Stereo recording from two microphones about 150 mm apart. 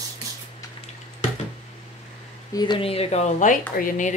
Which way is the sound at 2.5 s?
30° left (ahead or behind).